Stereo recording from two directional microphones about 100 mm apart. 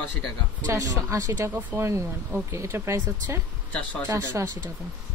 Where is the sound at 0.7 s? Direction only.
30° right (ahead or behind).